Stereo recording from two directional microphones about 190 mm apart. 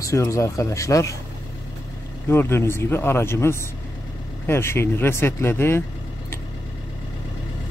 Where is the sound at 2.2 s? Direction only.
15° left (ahead or behind).